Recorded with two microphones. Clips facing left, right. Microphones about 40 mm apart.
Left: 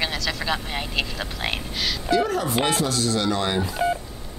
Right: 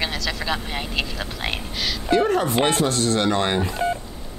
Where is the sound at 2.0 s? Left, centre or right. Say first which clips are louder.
Right 3 dB; right.